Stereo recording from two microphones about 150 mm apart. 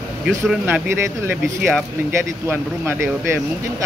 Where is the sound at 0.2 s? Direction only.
5° right (ahead or behind).